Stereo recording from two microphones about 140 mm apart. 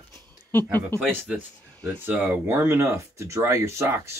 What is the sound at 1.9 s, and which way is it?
Speech, 15° right (ahead or behind).